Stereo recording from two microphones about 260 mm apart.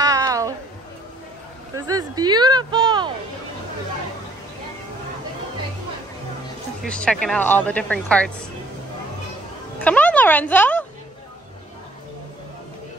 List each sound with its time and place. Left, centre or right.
0.0 s a sound: centre
1.8 s speech: centre
6.8 s speech: centre
9.8 s speech: centre